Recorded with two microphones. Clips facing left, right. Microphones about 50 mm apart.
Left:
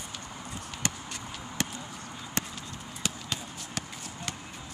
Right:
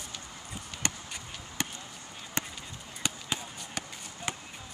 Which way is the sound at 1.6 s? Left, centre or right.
Centre.